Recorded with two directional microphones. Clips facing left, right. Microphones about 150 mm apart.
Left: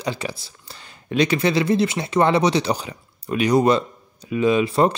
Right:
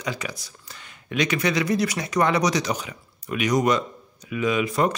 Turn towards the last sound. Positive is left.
turn(degrees=30)  # may be behind; listen again after turning